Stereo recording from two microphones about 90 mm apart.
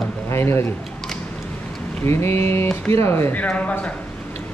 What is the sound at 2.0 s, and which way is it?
Speech, 30° left (ahead or behind).